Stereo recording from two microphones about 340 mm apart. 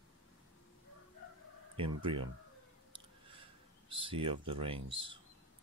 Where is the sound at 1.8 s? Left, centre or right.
Centre.